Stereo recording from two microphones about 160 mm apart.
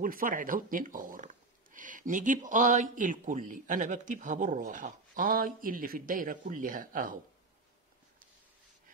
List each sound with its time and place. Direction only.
0.0 s speech: 60° right (ahead or behind)